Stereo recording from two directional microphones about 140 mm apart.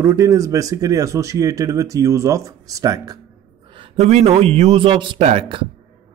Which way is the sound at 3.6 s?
40° right (ahead or behind).